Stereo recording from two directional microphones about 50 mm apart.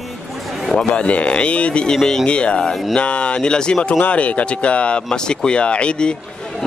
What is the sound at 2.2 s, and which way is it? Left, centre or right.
Speech, left.